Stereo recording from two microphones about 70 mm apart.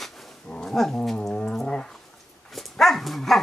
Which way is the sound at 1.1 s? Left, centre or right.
Centre.